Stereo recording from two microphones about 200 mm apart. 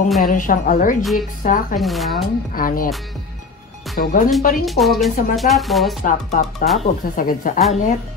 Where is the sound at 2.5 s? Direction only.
45° left (ahead or behind).